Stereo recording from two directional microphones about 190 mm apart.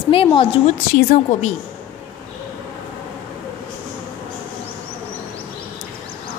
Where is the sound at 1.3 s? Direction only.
40° left (ahead or behind).